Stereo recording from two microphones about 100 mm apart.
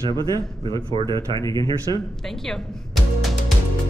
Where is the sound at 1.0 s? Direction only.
80° right.